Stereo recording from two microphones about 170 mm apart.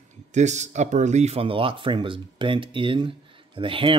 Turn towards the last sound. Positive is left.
turn(degrees=-30)  # may be behind; listen again after turning